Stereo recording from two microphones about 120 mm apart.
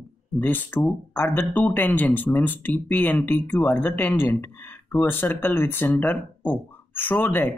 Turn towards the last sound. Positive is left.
turn(degrees=15)  # may be behind; listen again after turning